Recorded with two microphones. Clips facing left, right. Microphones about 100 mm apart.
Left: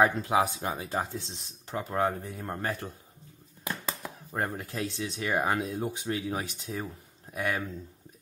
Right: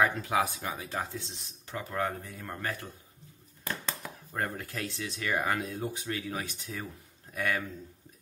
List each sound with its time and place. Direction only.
0.0 s speech: 25° left (ahead or behind)
3.6 s a sound: 5° left (ahead or behind)
4.3 s speech: 20° left (ahead or behind)